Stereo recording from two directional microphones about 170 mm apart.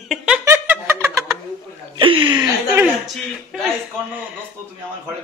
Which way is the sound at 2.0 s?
30° right (ahead or behind).